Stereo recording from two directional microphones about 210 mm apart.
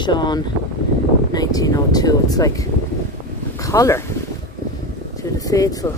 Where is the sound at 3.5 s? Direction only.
15° left (ahead or behind).